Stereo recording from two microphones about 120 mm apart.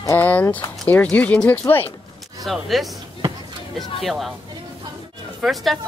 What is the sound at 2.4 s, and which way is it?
Speech, centre (ahead or behind).